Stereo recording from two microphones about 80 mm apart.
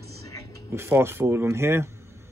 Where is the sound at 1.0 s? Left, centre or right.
Right.